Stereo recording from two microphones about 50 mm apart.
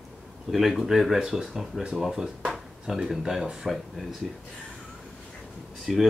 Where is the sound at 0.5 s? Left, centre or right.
Centre.